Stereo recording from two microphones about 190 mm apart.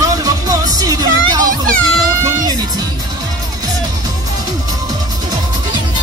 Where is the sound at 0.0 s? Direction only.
20° right (ahead or behind).